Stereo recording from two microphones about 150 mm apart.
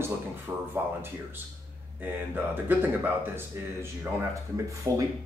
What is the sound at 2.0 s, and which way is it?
Speech, 15° right (ahead or behind).